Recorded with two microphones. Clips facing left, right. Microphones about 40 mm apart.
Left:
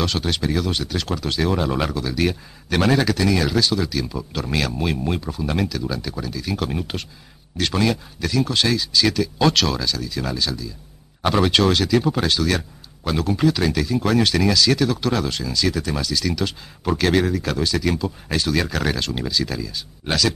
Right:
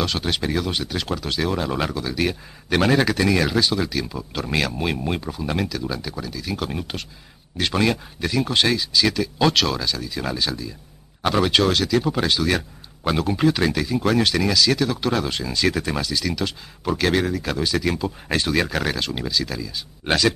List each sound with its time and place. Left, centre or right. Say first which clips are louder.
0.0 s speech: left 1 dB; centre
3.1 s speech: even; right; by 7.1 s centre
7.5 s speech: even; centre
11.2 s speech: left 1 dB; centre
13.0 s speech: even; right; by 15.0 s centre
15.0 s speech: even; centre; by 16.0 s right
16.0 s speech: left 1 dB; centre
20.1 s speech: right 2 dB; right